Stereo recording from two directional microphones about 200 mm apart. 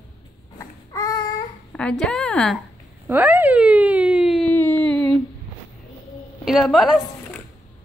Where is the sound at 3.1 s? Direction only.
10° right (ahead or behind).